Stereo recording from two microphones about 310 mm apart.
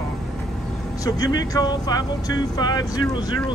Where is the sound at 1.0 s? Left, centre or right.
Centre.